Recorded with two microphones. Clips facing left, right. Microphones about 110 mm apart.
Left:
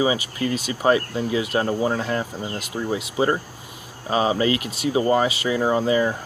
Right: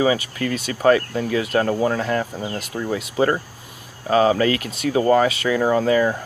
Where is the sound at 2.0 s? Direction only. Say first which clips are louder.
Right 3 dB; 25° left (ahead or behind).